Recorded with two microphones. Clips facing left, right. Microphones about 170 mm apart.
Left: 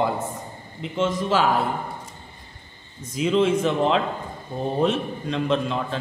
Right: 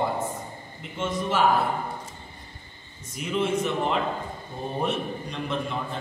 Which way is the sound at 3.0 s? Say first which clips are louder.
Left 7 dB; 90° left.